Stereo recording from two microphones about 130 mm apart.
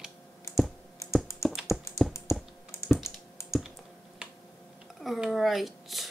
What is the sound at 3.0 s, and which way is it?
Computer keyboard, 20° left (ahead or behind).